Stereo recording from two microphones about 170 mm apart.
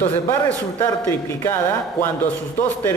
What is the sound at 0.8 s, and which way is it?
A man's voice, 15° left (ahead or behind).